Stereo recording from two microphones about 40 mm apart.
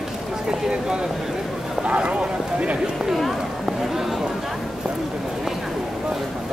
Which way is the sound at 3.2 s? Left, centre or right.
Centre.